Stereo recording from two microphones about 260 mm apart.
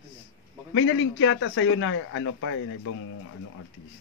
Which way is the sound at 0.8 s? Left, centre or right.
Left.